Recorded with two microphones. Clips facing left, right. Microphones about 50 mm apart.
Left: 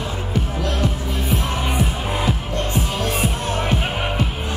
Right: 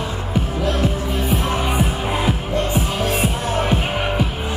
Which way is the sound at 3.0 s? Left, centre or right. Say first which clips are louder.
Right 2 dB; centre.